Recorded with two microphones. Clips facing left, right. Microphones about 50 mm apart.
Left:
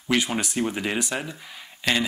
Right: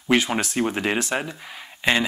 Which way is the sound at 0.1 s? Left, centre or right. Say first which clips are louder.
Right 3 dB; right.